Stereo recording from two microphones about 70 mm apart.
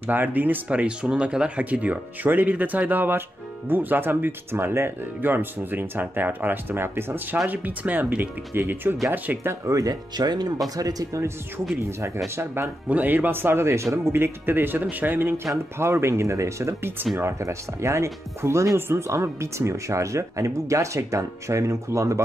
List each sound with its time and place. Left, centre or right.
0.0 s speech: right
7.4 s speech: right
9.7 s speech: right
10.1 s speech: right
10.8 s speech: right
12.4 s speech: right
12.8 s speech: right